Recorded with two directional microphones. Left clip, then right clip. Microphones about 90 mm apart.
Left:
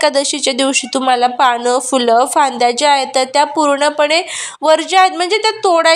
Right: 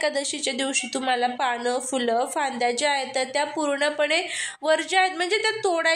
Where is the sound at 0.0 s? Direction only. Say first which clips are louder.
Left 12 dB; 40° left (ahead or behind).